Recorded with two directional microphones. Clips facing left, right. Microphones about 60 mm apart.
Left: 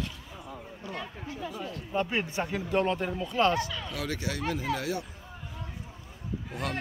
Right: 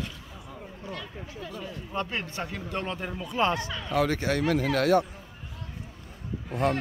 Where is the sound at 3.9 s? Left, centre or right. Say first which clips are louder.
Right 10 dB; right.